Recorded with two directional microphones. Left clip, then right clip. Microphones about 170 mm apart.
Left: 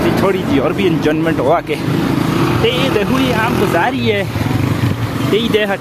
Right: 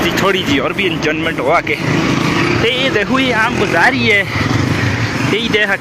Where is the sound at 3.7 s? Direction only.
10° left (ahead or behind).